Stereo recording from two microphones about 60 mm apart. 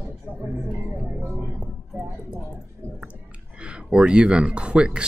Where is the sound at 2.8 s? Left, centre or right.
Right.